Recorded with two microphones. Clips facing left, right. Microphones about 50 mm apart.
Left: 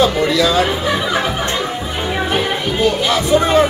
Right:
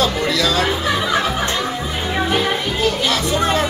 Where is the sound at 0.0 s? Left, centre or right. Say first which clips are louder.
Left 4 dB; centre.